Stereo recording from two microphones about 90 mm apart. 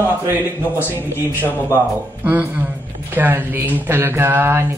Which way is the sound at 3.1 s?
25° right (ahead or behind).